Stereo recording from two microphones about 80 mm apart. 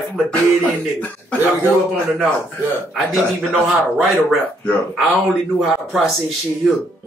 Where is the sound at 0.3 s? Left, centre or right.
Centre.